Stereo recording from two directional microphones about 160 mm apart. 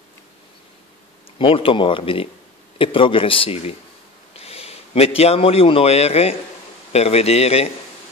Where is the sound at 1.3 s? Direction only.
35° left (ahead or behind).